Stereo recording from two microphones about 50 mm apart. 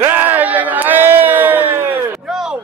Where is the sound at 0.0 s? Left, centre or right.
Right.